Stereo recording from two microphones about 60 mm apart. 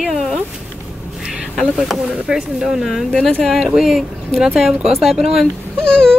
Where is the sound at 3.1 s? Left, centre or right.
Centre.